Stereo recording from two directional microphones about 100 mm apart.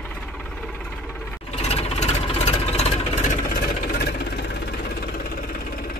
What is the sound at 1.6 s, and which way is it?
Engine, 90° left.